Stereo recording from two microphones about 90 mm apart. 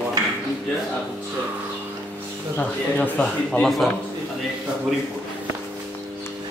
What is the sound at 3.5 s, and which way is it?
Speech, 5° left (ahead or behind).